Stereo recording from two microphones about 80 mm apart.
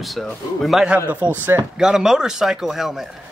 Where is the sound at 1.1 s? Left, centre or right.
Right.